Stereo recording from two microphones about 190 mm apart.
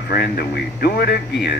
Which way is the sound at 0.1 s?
55° left (ahead or behind).